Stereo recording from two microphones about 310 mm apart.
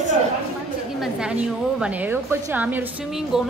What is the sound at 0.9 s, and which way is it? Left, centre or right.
A woman's voice, centre.